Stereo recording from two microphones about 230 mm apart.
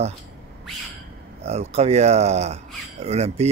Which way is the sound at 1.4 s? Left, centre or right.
Right.